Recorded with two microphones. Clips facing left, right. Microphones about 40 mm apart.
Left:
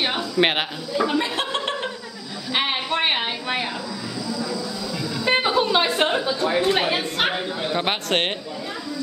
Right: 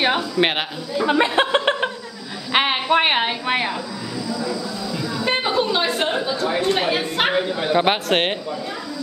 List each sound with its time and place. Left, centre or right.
0.4 s a man's voice: centre
1.0 s chuckle: right
2.5 s a sound: right
4.3 s vehicle horn: centre
5.3 s music: centre
5.9 s a woman's voice: centre
7.2 s speech: centre